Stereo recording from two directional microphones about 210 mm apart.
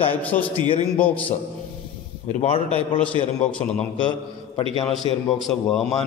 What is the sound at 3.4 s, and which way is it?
A man's voice, 5° left (ahead or behind).